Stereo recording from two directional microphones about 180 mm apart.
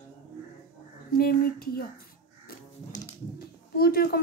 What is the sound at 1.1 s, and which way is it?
Speech, 55° left (ahead or behind).